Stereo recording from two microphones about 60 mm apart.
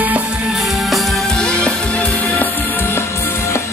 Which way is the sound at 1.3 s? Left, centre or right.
Centre.